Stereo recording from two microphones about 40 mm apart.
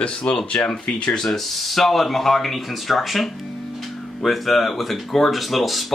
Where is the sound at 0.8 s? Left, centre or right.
Left.